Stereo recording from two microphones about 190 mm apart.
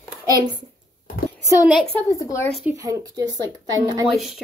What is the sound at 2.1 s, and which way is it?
Speech, 20° left (ahead or behind).